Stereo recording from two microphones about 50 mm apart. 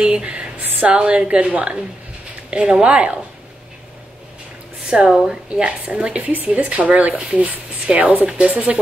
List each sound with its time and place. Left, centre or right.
0.0 s a woman's voice: right
5.1 s a woman's voice: centre